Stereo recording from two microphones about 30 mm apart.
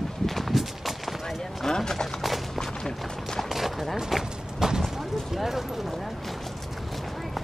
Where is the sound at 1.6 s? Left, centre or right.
Centre.